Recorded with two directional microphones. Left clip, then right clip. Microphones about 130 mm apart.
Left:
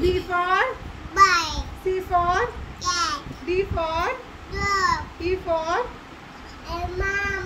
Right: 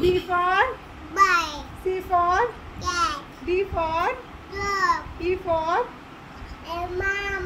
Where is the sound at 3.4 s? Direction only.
15° right (ahead or behind).